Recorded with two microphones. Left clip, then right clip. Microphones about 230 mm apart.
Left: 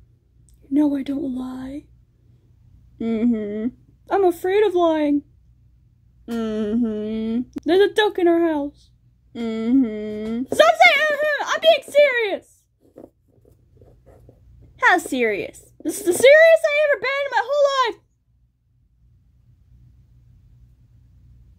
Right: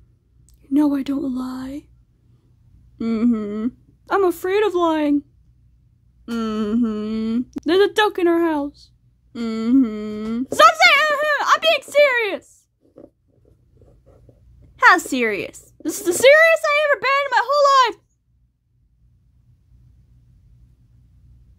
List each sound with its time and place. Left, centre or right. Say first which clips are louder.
0.7 s a woman's voice: right 1 dB; right
3.0 s a woman's voice: right 1 dB; centre
6.3 s a woman's voice: right 1 dB; right
14.8 s a woman's voice: right 3 dB; right